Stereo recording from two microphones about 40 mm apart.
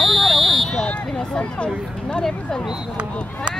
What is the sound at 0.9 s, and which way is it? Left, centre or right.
Speech, left.